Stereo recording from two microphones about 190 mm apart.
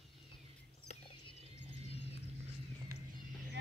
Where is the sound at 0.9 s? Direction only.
35° left (ahead or behind).